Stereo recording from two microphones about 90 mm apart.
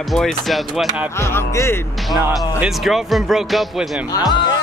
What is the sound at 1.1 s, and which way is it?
Speech, 30° left (ahead or behind).